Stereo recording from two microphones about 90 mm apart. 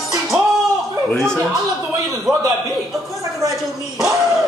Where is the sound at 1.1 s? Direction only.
5° left (ahead or behind).